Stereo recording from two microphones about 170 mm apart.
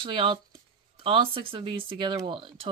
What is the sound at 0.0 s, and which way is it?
Speech, 30° right (ahead or behind).